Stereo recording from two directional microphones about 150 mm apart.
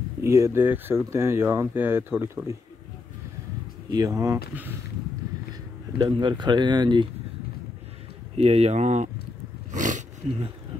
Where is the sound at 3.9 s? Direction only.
25° right (ahead or behind).